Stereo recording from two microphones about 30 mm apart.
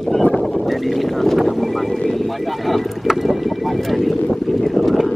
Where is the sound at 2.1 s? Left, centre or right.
Centre.